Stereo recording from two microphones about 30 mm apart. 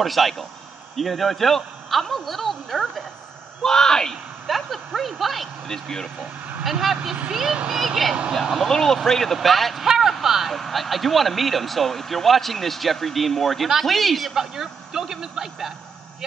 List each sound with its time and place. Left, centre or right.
0.0 s speech: centre
3.6 s speech: centre
4.5 s speech: centre
5.7 s speech: centre
6.6 s a man's voice: centre
8.6 s speech: centre
9.8 s a sound: centre
10.2 s vehicle: centre
10.5 s speech: centre
14.3 s a man's voice: centre